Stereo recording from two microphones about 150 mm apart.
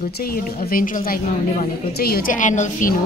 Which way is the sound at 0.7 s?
70° left (ahead or behind).